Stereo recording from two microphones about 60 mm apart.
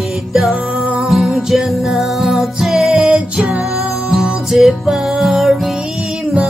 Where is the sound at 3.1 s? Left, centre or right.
Centre.